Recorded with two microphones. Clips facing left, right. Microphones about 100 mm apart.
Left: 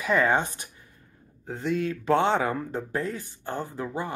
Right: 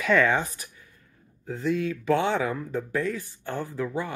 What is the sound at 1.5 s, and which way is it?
Speech, 60° left (ahead or behind).